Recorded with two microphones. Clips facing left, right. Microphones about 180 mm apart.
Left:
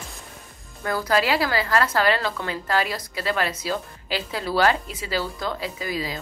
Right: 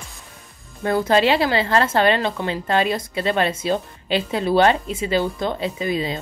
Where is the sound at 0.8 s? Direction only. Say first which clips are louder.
Right 5 dB; 25° right (ahead or behind).